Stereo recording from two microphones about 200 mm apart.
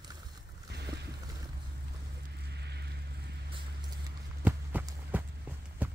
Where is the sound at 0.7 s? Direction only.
55° right (ahead or behind).